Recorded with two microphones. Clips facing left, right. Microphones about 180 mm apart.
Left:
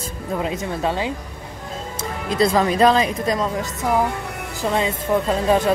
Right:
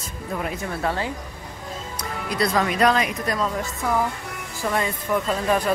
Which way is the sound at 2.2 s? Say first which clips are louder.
Left 5 dB; 25° left (ahead or behind).